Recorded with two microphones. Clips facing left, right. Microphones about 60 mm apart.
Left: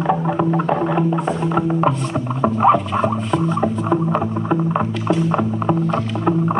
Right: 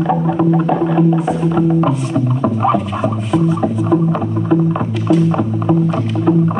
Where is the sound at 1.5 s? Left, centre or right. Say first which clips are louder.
Right 4 dB; left.